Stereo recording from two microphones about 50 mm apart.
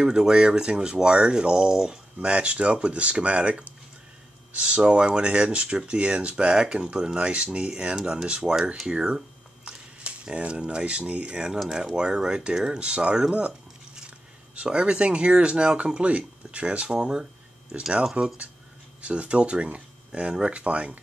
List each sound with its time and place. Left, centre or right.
0.0 s speech: centre
10.2 s speech: centre
14.5 s speech: right